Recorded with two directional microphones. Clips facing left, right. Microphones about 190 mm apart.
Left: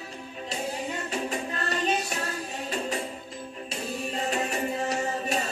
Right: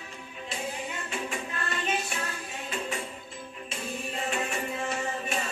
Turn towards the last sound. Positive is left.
turn(degrees=40)  # may be behind; listen again after turning